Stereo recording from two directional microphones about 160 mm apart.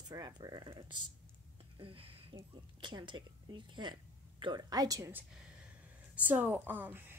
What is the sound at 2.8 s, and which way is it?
A woman's voice, 30° right (ahead or behind).